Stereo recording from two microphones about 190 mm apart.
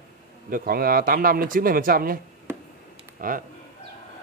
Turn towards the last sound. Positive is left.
turn(degrees=-50)  # may be behind; listen again after turning